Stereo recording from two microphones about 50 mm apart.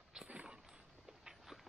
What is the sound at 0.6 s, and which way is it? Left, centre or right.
Walk, centre.